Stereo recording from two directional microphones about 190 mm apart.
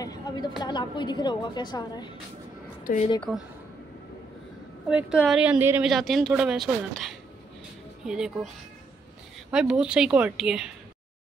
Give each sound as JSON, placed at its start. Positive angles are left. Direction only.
{"t": 0.0, "sound": "a sound", "side_deg": 20}
{"t": 0.6, "sound": "a woman's voice", "side_deg": 25}
{"t": 2.8, "sound": "speech", "side_deg": 45}
{"t": 3.2, "sound": "a woman's voice", "side_deg": 0}
{"t": 4.8, "sound": "a woman's voice", "side_deg": -5}
{"t": 9.5, "sound": "a woman's voice", "side_deg": -5}